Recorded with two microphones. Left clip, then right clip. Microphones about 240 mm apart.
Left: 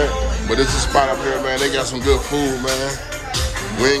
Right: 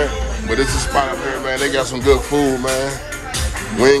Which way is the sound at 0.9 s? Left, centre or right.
Centre.